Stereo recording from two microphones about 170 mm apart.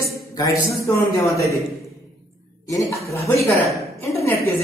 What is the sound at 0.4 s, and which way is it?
A woman's voice, 20° left (ahead or behind).